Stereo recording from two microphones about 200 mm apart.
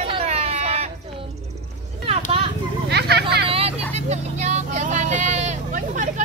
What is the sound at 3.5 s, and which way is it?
Vehicle, 30° right (ahead or behind).